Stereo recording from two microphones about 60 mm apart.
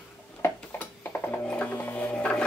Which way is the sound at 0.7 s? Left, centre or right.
Left.